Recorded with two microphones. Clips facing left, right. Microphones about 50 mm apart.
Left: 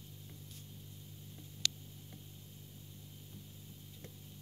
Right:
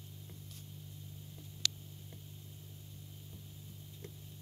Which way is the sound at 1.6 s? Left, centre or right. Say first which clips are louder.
Even; left.